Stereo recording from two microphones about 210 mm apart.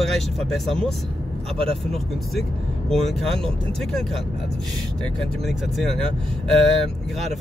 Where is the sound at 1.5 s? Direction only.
25° right (ahead or behind).